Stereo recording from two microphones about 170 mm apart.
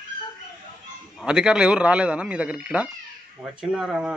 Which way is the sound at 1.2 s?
5° right (ahead or behind).